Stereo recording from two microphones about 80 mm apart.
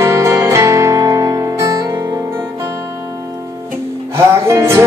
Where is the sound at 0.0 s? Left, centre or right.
Right.